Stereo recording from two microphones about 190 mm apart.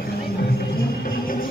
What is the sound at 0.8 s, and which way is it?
Music, 50° left (ahead or behind).